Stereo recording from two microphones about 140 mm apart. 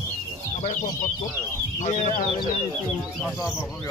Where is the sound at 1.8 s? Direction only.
50° left (ahead or behind).